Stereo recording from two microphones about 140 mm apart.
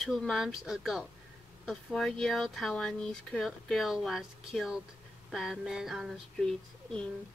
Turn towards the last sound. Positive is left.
turn(degrees=5)  # may be behind; listen again after turning